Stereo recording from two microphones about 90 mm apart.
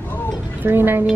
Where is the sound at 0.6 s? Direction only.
25° right (ahead or behind).